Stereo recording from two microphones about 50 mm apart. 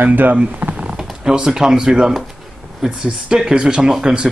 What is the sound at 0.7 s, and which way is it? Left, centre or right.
Speech, centre.